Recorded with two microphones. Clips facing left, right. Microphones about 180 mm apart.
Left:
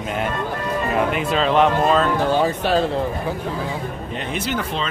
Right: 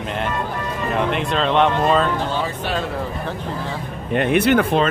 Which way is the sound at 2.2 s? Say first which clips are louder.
Left 5 dB; 45° left (ahead or behind).